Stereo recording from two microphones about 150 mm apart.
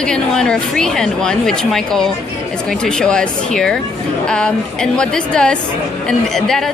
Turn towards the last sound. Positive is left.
turn(degrees=0)  # may be behind; listen again after turning